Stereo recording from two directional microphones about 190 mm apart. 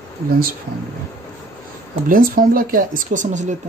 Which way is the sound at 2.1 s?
50° right (ahead or behind).